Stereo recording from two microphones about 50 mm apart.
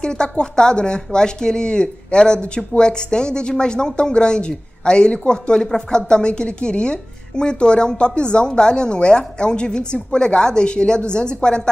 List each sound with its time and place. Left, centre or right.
0.0 s speech: centre